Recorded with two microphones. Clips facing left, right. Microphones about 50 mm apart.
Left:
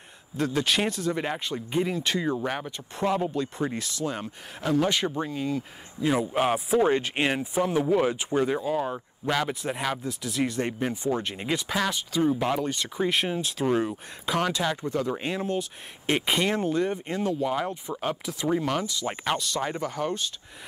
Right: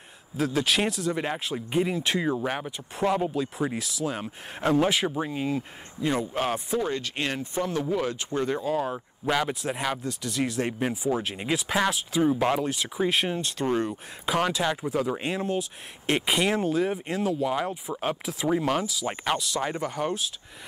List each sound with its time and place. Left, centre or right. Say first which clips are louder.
0.4 s speech: even; centre
4.6 s speech: right 2 dB; right
4.8 s speech: right 1 dB; centre
5.3 s speech: right 1 dB; right
5.9 s speech: left 2 dB; centre
6.8 s speech: left 6 dB; left; by 11.8 s centre
11.8 s speech: right 1 dB; centre